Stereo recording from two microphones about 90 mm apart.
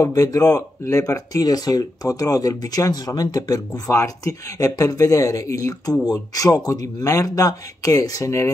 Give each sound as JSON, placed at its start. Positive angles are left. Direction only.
{"t": 0.0, "sound": "speech", "side_deg": 40}